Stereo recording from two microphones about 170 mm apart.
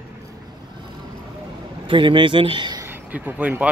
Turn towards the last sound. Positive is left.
turn(degrees=-10)  # may be behind; listen again after turning